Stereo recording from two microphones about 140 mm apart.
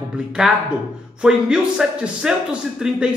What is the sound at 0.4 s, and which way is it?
A man's voice, 5° right (ahead or behind).